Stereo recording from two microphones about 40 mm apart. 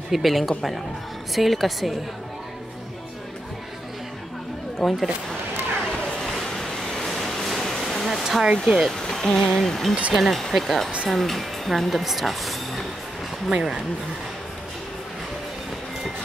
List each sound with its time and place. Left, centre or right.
0.1 s speech: centre
4.7 s speech: centre
6.3 s a sound: centre
8.2 s speech: centre
8.9 s speech: centre
13.5 s speech: centre